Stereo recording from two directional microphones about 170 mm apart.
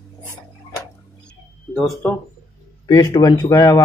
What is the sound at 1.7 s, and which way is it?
Speech, centre (ahead or behind).